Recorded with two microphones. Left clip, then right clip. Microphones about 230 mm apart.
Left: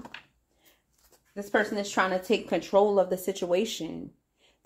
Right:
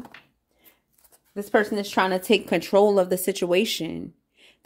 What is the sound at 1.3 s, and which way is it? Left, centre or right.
Speech, right.